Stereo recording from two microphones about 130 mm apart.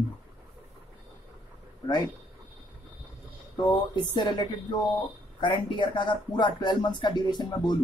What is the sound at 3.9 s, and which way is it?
Speech, 35° left (ahead or behind).